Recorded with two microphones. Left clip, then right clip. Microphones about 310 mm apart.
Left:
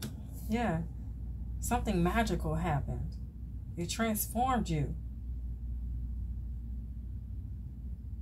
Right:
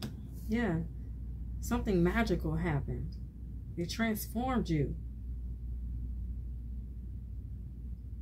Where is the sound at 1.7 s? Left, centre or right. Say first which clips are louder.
Even; left.